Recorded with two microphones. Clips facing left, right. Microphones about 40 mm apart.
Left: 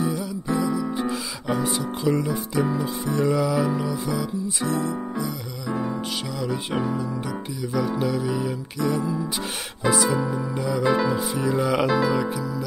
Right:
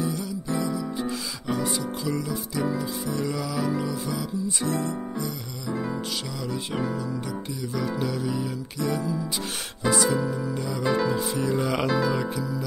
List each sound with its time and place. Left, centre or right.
0.0 s music: centre
2.0 s music: left
3.4 s music: centre
4.2 s speech: centre
6.4 s music: centre
9.8 s speech: centre
10.2 s music: centre
10.6 s speech: centre